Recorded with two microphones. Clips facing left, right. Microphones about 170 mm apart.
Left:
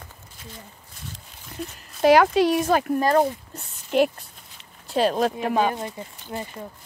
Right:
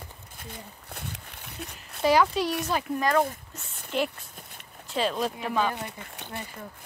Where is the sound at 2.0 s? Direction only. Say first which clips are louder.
Left 6 dB; 60° left (ahead or behind).